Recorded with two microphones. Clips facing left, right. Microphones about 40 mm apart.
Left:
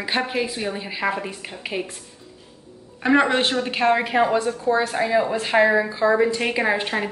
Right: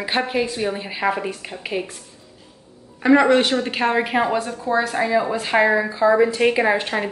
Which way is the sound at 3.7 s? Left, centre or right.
Centre.